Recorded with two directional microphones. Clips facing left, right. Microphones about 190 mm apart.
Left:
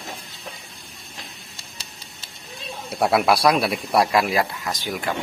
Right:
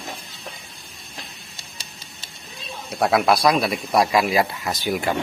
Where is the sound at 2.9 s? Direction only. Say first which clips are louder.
Even; 5° left (ahead or behind).